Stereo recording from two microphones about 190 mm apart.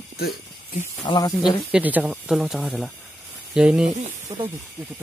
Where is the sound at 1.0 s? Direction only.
20° left (ahead or behind).